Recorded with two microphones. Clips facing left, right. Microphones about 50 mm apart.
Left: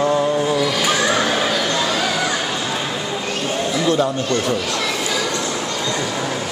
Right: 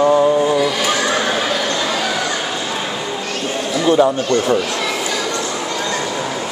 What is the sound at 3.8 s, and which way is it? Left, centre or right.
Speech, right.